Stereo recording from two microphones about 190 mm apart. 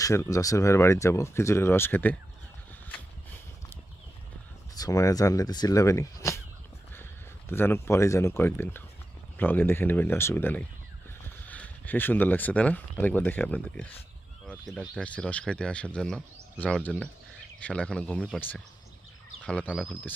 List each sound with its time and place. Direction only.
0.0 s speech: 15° left (ahead or behind)
4.7 s speech: 20° left (ahead or behind)